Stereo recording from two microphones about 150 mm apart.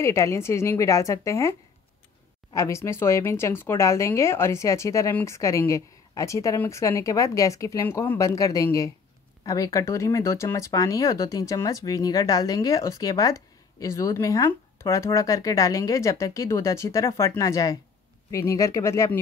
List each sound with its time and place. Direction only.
0.0 s speech: 20° left (ahead or behind)
2.5 s speech: 20° left (ahead or behind)